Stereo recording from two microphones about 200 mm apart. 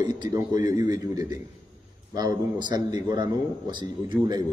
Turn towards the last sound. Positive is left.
turn(degrees=-20)  # may be behind; listen again after turning